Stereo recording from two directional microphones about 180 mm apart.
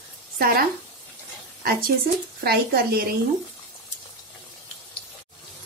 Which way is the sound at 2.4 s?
60° right (ahead or behind).